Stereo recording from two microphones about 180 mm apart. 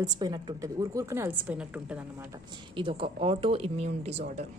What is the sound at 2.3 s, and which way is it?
A woman's voice, 25° right (ahead or behind).